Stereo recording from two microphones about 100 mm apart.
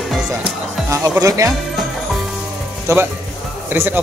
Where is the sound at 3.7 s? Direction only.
20° right (ahead or behind).